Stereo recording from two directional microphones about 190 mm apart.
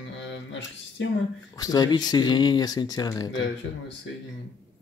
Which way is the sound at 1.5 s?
20° left (ahead or behind).